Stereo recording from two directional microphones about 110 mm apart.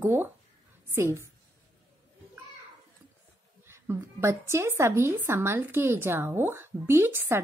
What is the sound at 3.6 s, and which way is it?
Speech, 20° right (ahead or behind).